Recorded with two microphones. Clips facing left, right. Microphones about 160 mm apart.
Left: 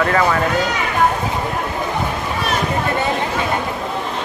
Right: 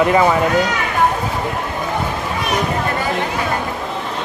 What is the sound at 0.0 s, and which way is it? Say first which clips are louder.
Speech: right 3 dB; 15° right (ahead or behind).